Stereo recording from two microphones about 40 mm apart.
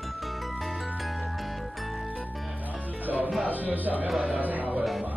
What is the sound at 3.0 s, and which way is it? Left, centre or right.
Music, right.